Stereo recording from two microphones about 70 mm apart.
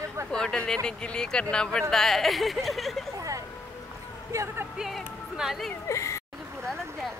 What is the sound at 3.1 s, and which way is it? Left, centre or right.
Vehicle, right.